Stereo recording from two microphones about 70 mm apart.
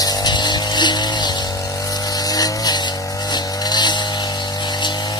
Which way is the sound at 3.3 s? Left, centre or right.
Left.